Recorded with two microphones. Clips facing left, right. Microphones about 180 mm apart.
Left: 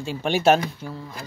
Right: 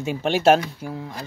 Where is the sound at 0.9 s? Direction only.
20° right (ahead or behind).